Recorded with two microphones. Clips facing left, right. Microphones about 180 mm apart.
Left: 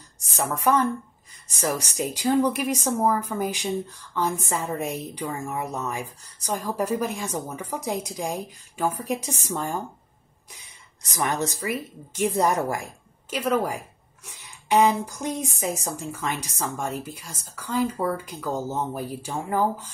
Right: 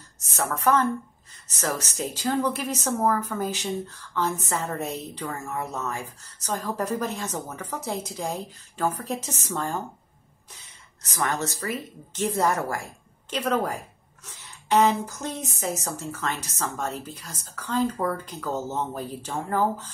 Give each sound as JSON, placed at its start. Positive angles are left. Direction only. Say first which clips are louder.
{"t": 0.4, "sound": "a woman's voice", "louder": "left 1 dB", "side_deg": 10}